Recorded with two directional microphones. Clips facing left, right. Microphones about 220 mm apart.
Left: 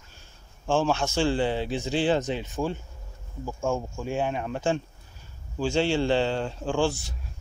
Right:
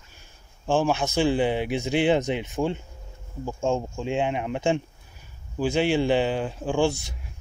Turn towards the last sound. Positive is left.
turn(degrees=-20)  # may be behind; listen again after turning